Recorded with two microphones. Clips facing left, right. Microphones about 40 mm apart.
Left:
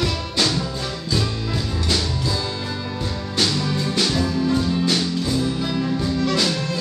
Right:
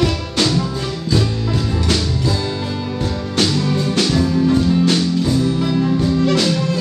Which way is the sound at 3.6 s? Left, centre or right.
Centre.